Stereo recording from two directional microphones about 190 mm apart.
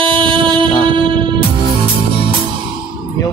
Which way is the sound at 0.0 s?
25° right (ahead or behind).